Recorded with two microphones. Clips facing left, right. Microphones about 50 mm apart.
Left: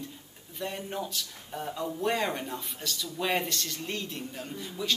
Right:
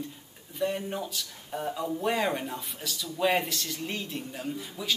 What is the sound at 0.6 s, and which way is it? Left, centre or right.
A man's voice, centre.